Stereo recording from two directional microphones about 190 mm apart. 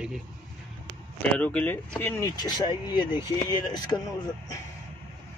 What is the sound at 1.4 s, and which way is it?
Speech, 10° left (ahead or behind).